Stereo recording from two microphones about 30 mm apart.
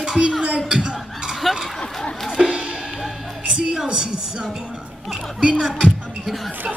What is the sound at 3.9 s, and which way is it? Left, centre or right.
A woman's voice, right.